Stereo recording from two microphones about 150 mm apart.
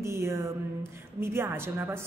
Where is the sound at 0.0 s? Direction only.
20° right (ahead or behind).